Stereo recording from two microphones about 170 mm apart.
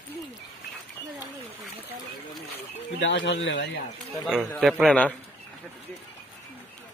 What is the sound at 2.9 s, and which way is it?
Speech, 90° left.